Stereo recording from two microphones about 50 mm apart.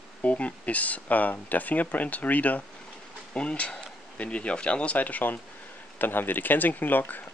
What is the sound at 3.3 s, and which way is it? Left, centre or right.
Speech, left.